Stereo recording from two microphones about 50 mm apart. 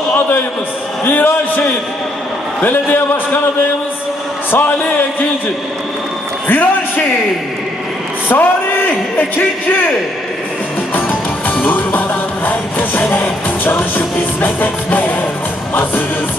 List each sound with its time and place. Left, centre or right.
1.0 s a man's voice: left
2.6 s a man's voice: left
4.5 s a man's voice: left
6.4 s a man's voice: left
8.3 s a man's voice: left
11.0 s music: left
13.7 s a man's voice: left
15.7 s music: left